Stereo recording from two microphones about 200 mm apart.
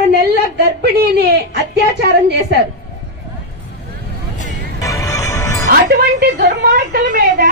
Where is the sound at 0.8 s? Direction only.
55° right (ahead or behind).